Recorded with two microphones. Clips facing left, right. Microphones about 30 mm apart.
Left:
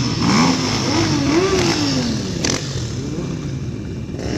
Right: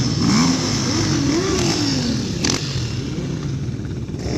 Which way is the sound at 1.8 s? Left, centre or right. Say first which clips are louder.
Left 1 dB; centre.